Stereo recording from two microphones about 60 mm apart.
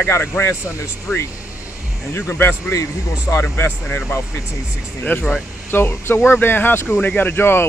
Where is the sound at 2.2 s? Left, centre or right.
Left.